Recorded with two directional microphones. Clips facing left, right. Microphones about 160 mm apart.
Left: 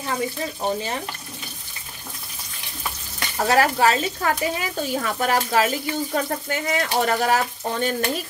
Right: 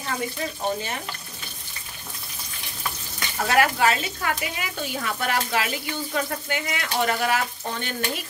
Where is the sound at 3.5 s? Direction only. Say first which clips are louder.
Left 2 dB; 35° left (ahead or behind).